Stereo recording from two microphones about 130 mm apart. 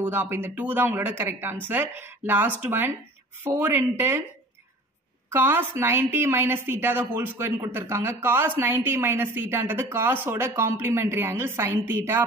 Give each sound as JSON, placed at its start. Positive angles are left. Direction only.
{"t": 0.0, "sound": "a woman's voice", "side_deg": -20}
{"t": 5.3, "sound": "a woman's voice", "side_deg": -15}